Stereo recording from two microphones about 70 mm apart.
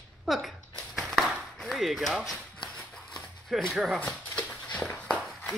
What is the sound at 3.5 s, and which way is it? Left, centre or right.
Speech, centre.